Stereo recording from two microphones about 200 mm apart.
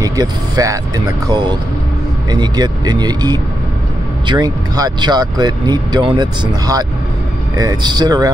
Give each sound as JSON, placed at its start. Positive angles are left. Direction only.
{"t": 0.0, "sound": "speech", "side_deg": -15}